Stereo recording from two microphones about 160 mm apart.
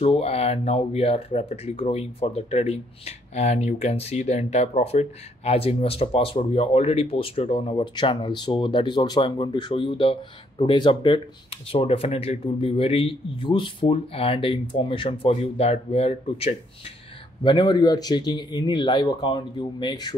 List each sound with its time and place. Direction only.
0.0 s speech: 40° left (ahead or behind)
17.4 s a man's voice: 25° left (ahead or behind)